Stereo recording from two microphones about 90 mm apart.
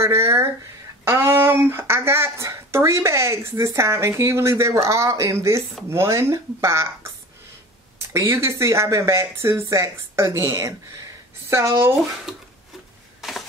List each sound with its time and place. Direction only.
0.0 s speech: 30° right (ahead or behind)
8.1 s speech: 30° right (ahead or behind)
12.3 s a sound: 5° right (ahead or behind)